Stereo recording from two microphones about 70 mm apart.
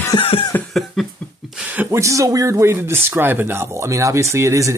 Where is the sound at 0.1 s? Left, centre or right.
Left.